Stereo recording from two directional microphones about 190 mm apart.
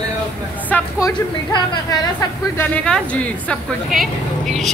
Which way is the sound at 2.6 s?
5° left (ahead or behind).